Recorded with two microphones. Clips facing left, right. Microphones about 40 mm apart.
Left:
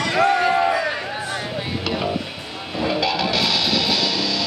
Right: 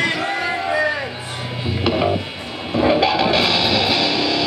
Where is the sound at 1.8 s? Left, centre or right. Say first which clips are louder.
Right 7 dB; right.